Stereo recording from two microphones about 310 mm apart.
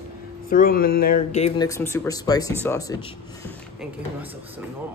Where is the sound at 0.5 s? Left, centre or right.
Left.